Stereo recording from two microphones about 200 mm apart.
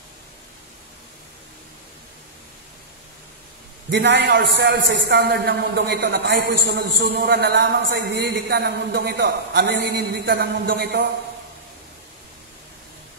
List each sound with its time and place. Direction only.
3.9 s a man's voice: 60° right (ahead or behind)